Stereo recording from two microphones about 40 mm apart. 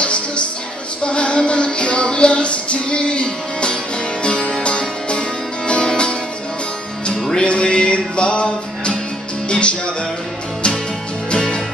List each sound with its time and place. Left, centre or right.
1.0 s music: left
7.4 s music: left
11.3 s music: centre